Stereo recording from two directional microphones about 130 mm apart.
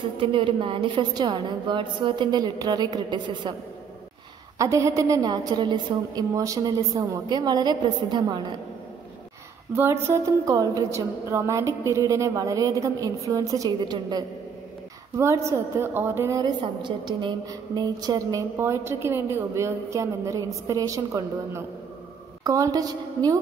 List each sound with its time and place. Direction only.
0.2 s a woman's voice: 40° right (ahead or behind)
4.6 s a woman's voice: 25° right (ahead or behind)
9.7 s a woman's voice: 20° right (ahead or behind)